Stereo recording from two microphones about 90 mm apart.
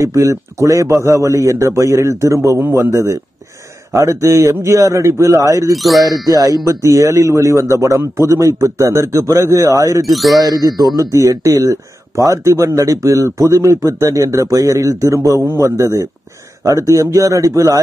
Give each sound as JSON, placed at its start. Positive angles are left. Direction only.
{"t": 0.0, "sound": "speech", "side_deg": -35}
{"t": 5.7, "sound": "speech", "side_deg": 0}
{"t": 6.2, "sound": "speech", "side_deg": -40}
{"t": 10.0, "sound": "speech", "side_deg": 0}
{"t": 10.4, "sound": "speech", "side_deg": -45}